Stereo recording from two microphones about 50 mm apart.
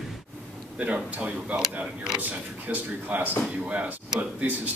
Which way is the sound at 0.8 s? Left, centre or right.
Right.